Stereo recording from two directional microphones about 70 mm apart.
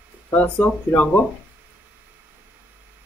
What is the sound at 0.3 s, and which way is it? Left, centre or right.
Speech, left.